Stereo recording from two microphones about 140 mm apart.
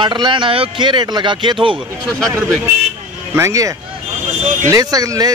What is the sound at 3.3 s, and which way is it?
Speech, 20° right (ahead or behind).